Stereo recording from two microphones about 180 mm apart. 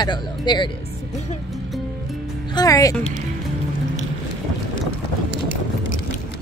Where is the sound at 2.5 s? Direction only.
20° left (ahead or behind).